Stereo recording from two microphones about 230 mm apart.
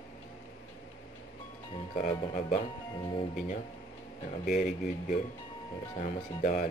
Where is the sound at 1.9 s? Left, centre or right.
Left.